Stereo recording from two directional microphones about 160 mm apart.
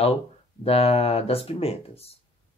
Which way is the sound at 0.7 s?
40° left (ahead or behind).